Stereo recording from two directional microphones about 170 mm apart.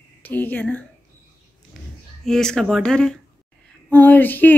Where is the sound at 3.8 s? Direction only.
10° left (ahead or behind).